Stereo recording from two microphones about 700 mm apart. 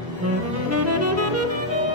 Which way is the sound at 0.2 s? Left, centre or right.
Centre.